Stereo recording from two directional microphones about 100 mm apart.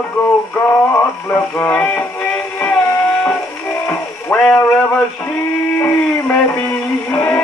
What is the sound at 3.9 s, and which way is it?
Music, 15° left (ahead or behind).